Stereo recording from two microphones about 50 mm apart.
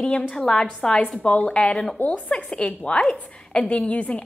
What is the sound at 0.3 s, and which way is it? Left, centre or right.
A woman's voice, centre.